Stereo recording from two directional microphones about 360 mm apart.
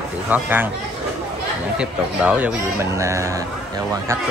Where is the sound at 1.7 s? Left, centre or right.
Centre.